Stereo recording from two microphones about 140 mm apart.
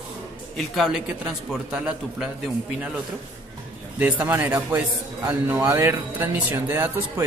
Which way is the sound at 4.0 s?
10° right (ahead or behind).